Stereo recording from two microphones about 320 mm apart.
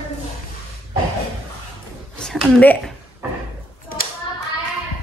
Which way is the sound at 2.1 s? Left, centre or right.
Centre.